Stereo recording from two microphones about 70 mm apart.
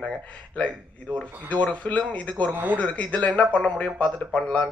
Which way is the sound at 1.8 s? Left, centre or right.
Centre.